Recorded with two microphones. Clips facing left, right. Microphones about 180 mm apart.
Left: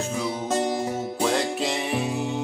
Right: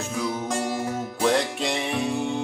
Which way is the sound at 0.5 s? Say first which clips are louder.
Left 2 dB; 20° left (ahead or behind).